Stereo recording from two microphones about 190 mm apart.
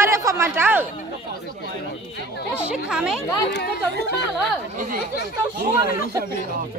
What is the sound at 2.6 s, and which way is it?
Speech, 5° right (ahead or behind).